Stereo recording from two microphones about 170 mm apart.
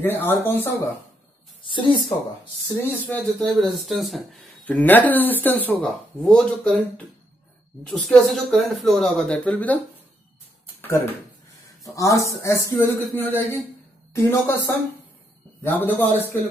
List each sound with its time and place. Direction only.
0.0 s speech: 15° left (ahead or behind)
1.6 s speech: 30° left (ahead or behind)
2.9 s speech: 10° left (ahead or behind)
7.9 s speech: centre (ahead or behind)
11.8 s speech: 20° left (ahead or behind)
15.6 s speech: 10° left (ahead or behind)